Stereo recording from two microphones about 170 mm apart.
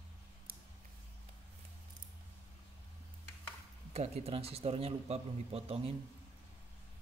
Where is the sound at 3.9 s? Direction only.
40° right (ahead or behind).